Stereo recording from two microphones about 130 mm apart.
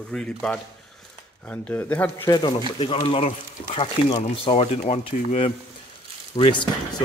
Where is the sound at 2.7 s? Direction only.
45° left (ahead or behind).